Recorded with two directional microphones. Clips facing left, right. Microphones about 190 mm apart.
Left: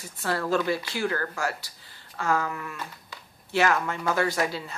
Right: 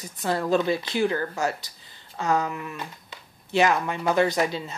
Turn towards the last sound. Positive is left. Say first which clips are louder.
# right 3 dB
turn(degrees=-20)  # may be behind; listen again after turning